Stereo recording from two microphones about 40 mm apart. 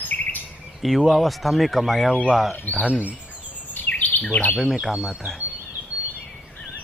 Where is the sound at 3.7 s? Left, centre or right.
Left.